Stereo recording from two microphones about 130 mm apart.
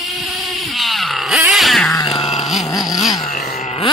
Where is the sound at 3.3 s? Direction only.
80° left.